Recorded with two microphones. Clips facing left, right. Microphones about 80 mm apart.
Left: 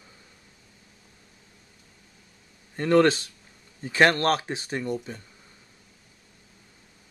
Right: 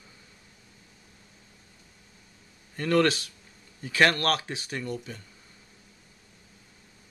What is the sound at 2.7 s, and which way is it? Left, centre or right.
Speech, left.